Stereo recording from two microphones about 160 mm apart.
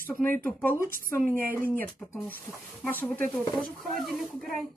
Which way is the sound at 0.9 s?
60° right (ahead or behind).